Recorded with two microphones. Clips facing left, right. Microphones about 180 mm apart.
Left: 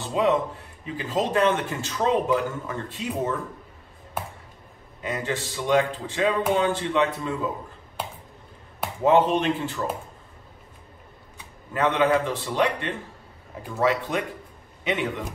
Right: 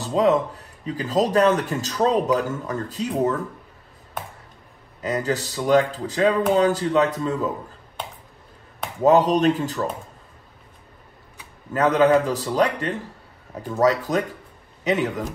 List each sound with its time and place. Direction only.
0.0 s speech: 40° right (ahead or behind)
5.0 s speech: 40° right (ahead or behind)
9.0 s speech: 40° right (ahead or behind)
11.7 s speech: 40° right (ahead or behind)